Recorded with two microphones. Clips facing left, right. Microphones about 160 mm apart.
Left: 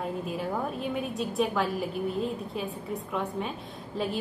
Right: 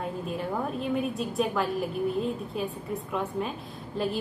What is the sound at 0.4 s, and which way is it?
A woman's voice, centre (ahead or behind).